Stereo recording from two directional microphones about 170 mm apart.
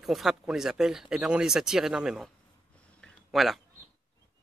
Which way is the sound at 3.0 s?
Centre (ahead or behind).